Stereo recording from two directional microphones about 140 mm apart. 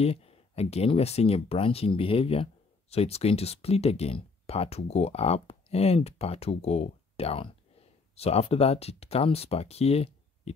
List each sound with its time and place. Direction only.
0.0 s speech: 45° left (ahead or behind)